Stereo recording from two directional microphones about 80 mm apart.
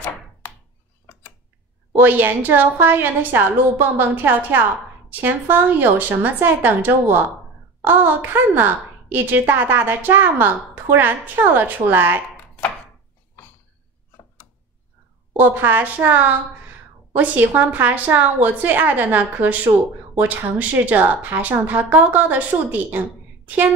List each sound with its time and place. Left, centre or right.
1.9 s a woman's voice: right
15.3 s a woman's voice: right